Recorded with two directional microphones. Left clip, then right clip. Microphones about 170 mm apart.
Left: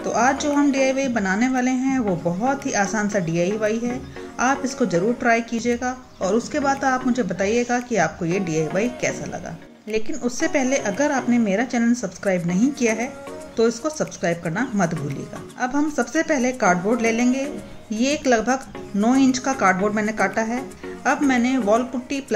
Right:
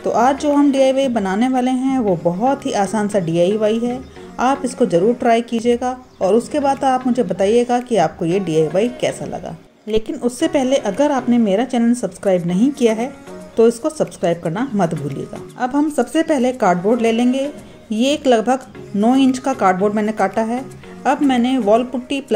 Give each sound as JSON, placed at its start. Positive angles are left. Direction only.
{"t": 0.0, "sound": "speech", "side_deg": -25}